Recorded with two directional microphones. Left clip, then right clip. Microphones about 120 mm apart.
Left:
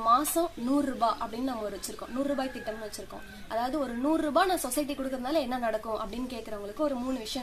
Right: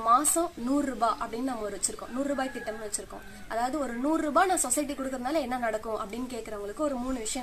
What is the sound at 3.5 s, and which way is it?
A woman's voice, 5° left (ahead or behind).